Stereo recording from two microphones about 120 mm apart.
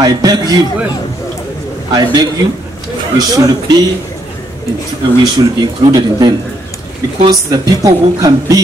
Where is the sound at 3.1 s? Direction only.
30° right (ahead or behind).